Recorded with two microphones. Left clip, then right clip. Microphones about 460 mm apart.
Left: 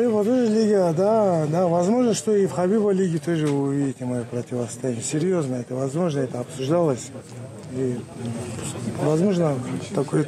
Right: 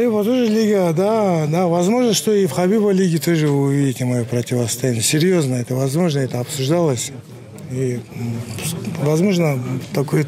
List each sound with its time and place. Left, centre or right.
0.0 s speech: right
9.1 s speech: right